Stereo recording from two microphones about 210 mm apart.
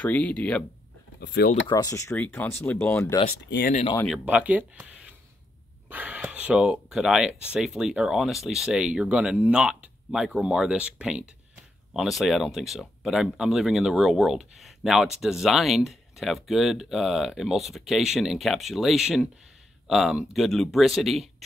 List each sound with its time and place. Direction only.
0.0 s speech: 5° left (ahead or behind)
1.2 s speech: 50° left (ahead or behind)
1.7 s speech: 15° left (ahead or behind)
3.3 s speech: 50° left (ahead or behind)
3.7 s speech: 25° left (ahead or behind)
4.0 s speech: centre (ahead or behind)